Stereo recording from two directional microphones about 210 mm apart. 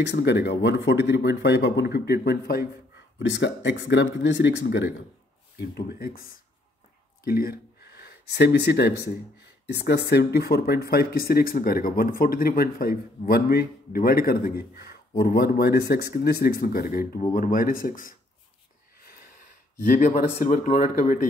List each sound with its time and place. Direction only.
0.0 s speech: 55° left (ahead or behind)
19.8 s speech: 35° left (ahead or behind)